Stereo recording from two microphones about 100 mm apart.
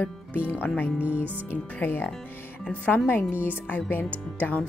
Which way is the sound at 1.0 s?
15° right (ahead or behind).